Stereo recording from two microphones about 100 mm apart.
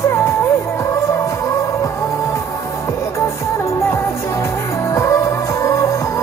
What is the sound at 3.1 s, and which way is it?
Music, 30° left (ahead or behind).